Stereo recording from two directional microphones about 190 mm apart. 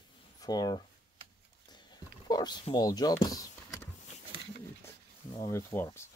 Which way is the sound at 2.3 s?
20° left (ahead or behind).